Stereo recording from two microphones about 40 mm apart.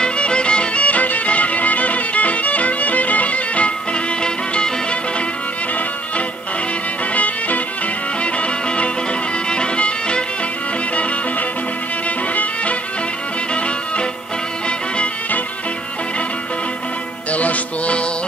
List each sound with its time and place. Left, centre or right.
0.0 s music: left
7.2 s music: left
8.2 s music: left
17.3 s music: left